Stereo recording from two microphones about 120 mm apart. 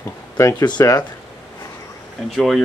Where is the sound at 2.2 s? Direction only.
Centre (ahead or behind).